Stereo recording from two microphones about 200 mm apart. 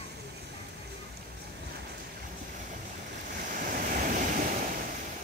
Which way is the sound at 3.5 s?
45° right (ahead or behind).